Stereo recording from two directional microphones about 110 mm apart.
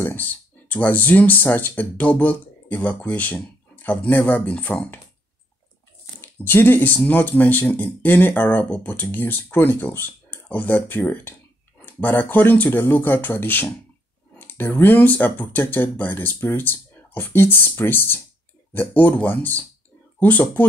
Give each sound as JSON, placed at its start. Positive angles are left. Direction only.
{"t": 0.0, "sound": "speech", "side_deg": 15}
{"t": 6.2, "sound": "speech", "side_deg": 20}